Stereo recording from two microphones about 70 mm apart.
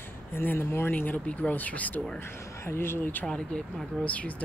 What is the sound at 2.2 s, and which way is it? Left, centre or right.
Speech, left.